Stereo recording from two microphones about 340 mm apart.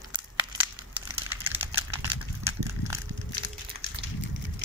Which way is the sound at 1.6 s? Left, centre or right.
Centre.